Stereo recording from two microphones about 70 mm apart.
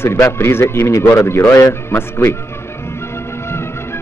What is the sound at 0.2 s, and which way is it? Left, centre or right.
Speech, left.